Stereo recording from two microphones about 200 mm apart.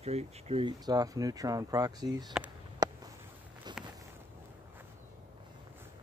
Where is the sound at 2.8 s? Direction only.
20° right (ahead or behind).